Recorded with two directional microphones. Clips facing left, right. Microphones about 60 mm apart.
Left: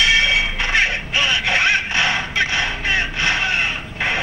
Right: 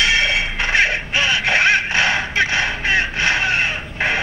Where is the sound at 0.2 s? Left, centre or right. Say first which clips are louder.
Left 1 dB; right.